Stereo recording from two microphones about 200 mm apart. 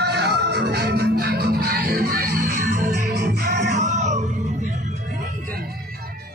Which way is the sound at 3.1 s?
55° right (ahead or behind).